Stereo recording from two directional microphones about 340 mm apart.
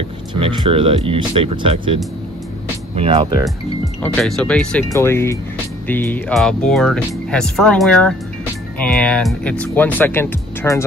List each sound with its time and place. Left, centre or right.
0.3 s speech: centre
3.0 s speech: centre
4.0 s speech: centre